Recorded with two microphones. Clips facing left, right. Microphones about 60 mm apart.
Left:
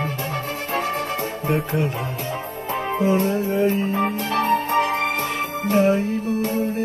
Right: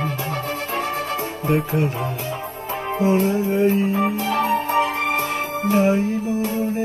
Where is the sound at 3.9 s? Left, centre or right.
Left.